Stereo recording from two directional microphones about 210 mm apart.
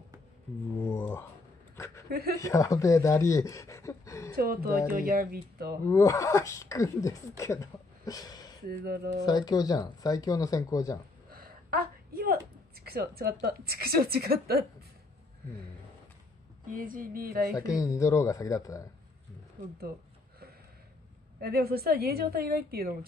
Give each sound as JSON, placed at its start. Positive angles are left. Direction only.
{"t": 0.9, "sound": "a sound", "side_deg": 10}
{"t": 2.0, "sound": "speech", "side_deg": -45}
{"t": 2.4, "sound": "speech", "side_deg": 15}
{"t": 4.4, "sound": "a woman's voice", "side_deg": -45}
{"t": 5.9, "sound": "speech", "side_deg": 15}
{"t": 8.6, "sound": "a woman's voice", "side_deg": -45}
{"t": 9.2, "sound": "speech", "side_deg": 20}
{"t": 11.2, "sound": "a sound", "side_deg": -45}
{"t": 16.7, "sound": "speech", "side_deg": -40}
{"t": 17.6, "sound": "speech", "side_deg": 15}
{"t": 21.4, "sound": "a woman's voice", "side_deg": -45}